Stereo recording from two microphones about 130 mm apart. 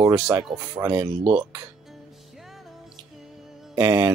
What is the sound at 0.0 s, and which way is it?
Speech, 30° right (ahead or behind).